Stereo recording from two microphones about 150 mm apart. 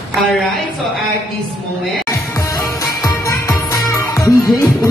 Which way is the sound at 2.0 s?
20° left (ahead or behind).